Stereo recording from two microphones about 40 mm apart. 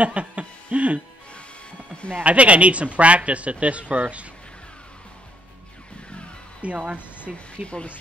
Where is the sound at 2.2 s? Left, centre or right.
Right.